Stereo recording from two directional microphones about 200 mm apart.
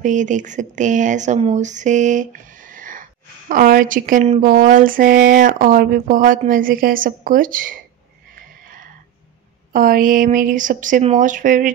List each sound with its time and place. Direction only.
0.0 s speech: 40° right (ahead or behind)
8.4 s a sound: 45° right (ahead or behind)
9.7 s speech: 45° right (ahead or behind)